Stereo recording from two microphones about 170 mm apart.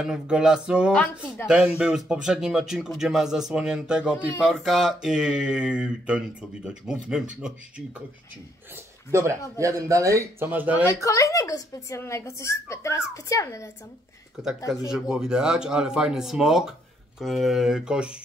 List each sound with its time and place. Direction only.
0.0 s speech: 5° right (ahead or behind)
0.9 s speech: 10° left (ahead or behind)
1.5 s speech: 5° right (ahead or behind)
8.7 s speech: 15° right (ahead or behind)
10.9 s speech: 15° left (ahead or behind)
14.9 s speech: 5° right (ahead or behind)